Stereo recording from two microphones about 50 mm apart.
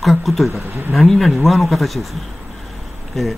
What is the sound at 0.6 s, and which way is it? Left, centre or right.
Speech, right.